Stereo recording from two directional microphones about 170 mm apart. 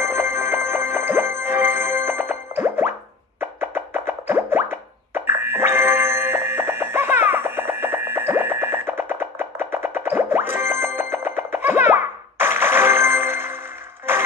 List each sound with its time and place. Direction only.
0.0 s music: 15° right (ahead or behind)
2.6 s plop: 15° right (ahead or behind)